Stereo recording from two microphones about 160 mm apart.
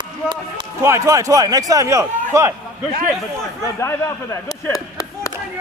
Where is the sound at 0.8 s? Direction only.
20° right (ahead or behind).